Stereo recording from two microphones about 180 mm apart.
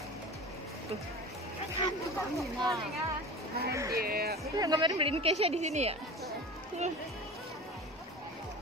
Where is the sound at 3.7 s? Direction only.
15° right (ahead or behind).